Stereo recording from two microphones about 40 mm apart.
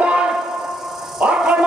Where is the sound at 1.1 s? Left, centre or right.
Right.